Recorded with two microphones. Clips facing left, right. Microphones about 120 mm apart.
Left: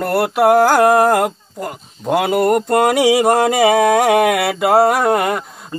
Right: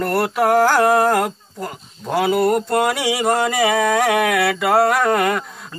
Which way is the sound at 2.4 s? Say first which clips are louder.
Left 3 dB; 50° left (ahead or behind).